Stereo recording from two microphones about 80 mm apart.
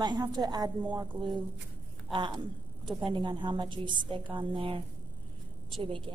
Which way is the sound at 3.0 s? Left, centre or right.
Right.